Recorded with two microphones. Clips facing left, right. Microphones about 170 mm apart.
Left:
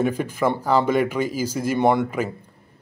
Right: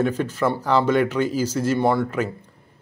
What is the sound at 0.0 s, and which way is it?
Speech, 10° left (ahead or behind).